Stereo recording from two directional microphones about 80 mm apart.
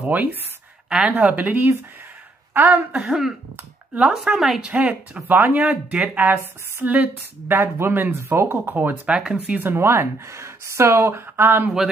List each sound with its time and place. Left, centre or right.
0.0 s a woman's voice: right
3.0 s speech: centre
5.3 s a woman's voice: right
9.1 s speech: centre
9.6 s speech: right